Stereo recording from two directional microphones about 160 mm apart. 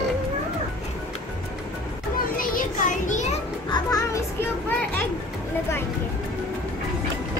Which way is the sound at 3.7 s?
20° left (ahead or behind).